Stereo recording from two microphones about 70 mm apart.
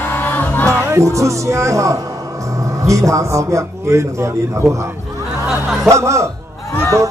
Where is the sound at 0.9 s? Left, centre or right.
Right.